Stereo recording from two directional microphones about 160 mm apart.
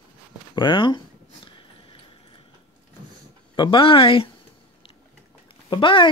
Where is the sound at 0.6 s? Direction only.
30° left (ahead or behind).